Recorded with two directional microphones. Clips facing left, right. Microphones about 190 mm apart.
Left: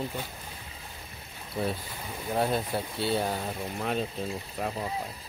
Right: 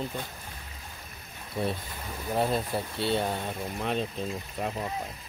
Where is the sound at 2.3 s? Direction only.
Centre (ahead or behind).